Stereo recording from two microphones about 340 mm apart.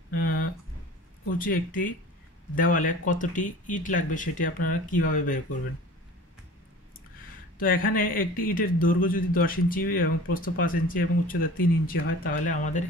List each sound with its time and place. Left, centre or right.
0.1 s a sound: left
1.4 s speech: left
7.5 s speech: left